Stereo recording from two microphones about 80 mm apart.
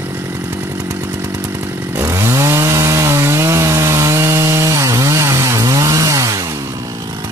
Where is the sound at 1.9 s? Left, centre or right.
Right.